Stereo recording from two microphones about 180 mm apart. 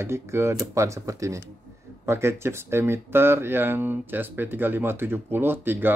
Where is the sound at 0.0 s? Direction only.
15° right (ahead or behind).